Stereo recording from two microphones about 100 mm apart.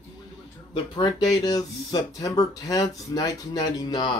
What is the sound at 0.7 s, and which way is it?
Speech, 50° left (ahead or behind).